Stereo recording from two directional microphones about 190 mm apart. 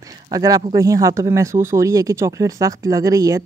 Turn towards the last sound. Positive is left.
turn(degrees=-20)  # may be behind; listen again after turning